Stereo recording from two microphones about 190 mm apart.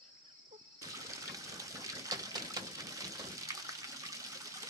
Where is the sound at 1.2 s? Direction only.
15° right (ahead or behind).